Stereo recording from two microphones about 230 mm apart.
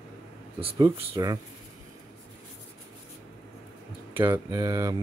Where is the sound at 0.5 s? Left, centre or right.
Right.